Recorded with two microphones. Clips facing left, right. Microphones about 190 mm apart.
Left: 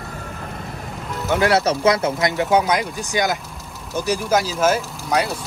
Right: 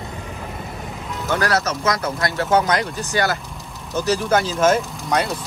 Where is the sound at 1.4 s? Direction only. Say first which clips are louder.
Left 6 dB; 30° left (ahead or behind).